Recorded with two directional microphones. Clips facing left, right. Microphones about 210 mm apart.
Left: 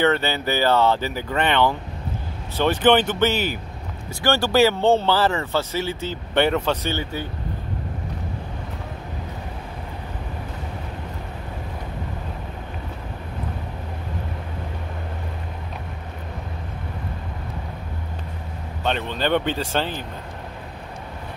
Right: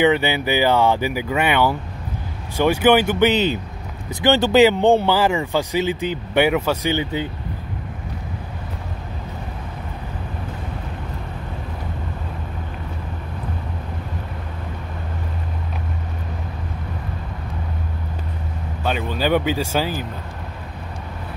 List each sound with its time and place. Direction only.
0.0 s speech: 15° right (ahead or behind)
18.9 s speech: 10° right (ahead or behind)